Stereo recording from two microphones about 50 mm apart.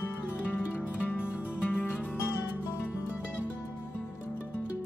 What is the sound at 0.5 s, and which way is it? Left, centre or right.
Music, right.